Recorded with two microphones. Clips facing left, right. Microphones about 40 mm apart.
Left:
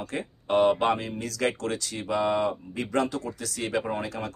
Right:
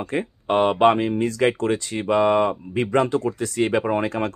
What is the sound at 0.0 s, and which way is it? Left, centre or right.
Speech, right.